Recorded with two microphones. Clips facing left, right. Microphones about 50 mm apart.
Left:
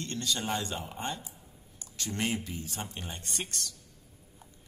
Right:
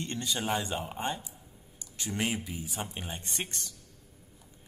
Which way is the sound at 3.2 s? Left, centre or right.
Right.